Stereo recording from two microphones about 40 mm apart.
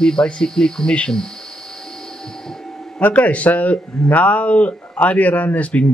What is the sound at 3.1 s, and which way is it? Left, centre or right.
Speech, left.